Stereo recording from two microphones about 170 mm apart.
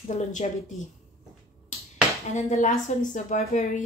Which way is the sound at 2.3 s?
45° left (ahead or behind).